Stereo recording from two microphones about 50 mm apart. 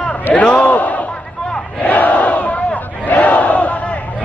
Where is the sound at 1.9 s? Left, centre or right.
Left.